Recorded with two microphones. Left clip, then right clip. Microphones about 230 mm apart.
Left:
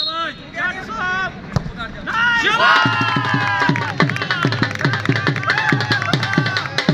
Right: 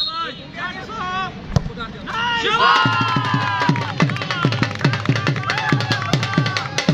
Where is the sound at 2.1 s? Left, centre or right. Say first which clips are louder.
Left 4 dB; left.